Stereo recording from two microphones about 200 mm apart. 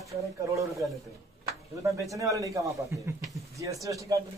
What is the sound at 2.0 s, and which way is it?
A man's voice, 15° right (ahead or behind).